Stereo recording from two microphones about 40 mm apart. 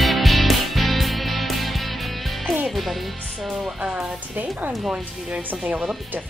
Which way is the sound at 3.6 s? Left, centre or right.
Centre.